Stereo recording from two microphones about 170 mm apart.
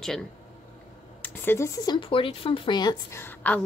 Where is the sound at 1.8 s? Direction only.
30° left (ahead or behind); by 3.6 s 10° left (ahead or behind).